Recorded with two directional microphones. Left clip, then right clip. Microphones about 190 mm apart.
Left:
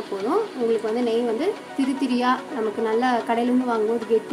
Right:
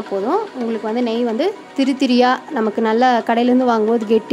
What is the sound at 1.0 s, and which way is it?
A woman's voice, 45° right (ahead or behind).